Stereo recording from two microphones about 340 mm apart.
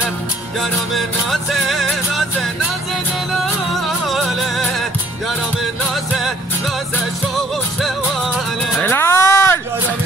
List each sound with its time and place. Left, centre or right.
0.6 s music: centre
4.0 s music: centre
8.7 s a sound: centre